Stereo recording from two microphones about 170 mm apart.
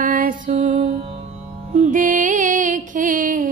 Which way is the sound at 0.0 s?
55° right (ahead or behind).